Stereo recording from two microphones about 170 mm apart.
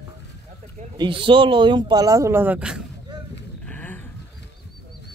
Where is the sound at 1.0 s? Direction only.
30° right (ahead or behind); by 2.8 s 5° right (ahead or behind).